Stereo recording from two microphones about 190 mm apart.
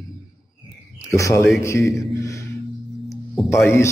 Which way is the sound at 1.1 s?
15° left (ahead or behind).